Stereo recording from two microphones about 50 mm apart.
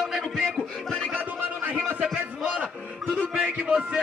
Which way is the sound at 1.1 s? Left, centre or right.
Right.